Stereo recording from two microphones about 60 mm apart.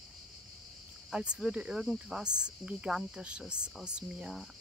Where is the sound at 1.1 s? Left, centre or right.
Centre.